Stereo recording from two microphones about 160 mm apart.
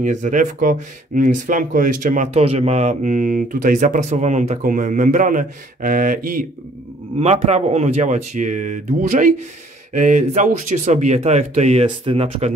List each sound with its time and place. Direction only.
0.0 s speech: 50° right (ahead or behind)
2.3 s speech: 40° right (ahead or behind); by 6.4 s 60° right (ahead or behind)
7.2 s speech: 40° right (ahead or behind)